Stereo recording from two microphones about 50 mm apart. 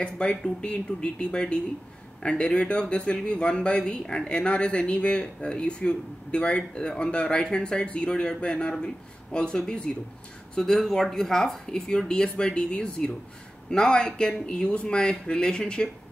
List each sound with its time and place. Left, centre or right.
0.0 s speech: centre